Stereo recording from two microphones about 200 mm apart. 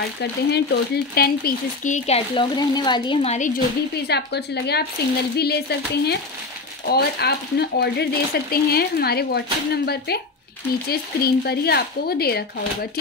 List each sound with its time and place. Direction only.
0.2 s speech: 55° left (ahead or behind); by 3.6 s 40° left (ahead or behind)
4.1 s speech: 55° left (ahead or behind)